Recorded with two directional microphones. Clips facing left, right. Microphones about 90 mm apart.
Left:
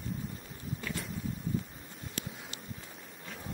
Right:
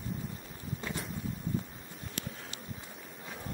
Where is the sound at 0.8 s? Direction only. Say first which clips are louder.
Right 1 dB; 20° right (ahead or behind).